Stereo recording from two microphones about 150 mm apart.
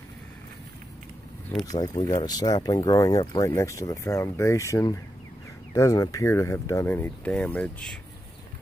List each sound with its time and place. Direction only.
1.7 s speech: 25° left (ahead or behind); by 7.9 s 5° left (ahead or behind)